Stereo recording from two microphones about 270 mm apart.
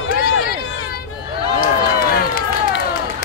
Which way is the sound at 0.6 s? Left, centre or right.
Left.